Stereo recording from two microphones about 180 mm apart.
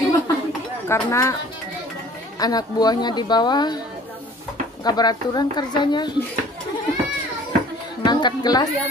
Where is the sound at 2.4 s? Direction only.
20° left (ahead or behind).